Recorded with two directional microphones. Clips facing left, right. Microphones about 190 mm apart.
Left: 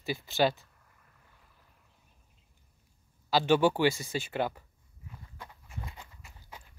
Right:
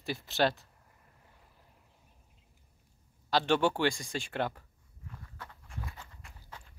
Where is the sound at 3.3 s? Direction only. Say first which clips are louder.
Left 3 dB; 5° left (ahead or behind).